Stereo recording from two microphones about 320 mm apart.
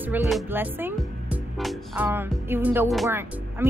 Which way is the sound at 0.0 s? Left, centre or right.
Centre.